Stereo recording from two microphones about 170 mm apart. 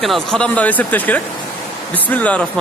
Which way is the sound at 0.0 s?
Centre (ahead or behind).